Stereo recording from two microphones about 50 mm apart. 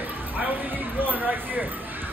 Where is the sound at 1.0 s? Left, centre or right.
Right.